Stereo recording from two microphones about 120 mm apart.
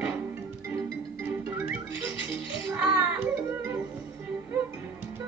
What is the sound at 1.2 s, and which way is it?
Music, 15° right (ahead or behind).